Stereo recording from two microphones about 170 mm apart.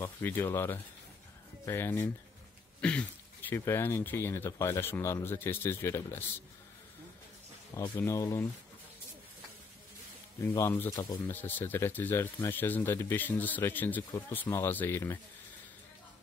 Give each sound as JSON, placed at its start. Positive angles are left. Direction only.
{"t": 0.0, "sound": "speech", "side_deg": 15}
{"t": 7.9, "sound": "speech", "side_deg": 15}
{"t": 10.4, "sound": "speech", "side_deg": 15}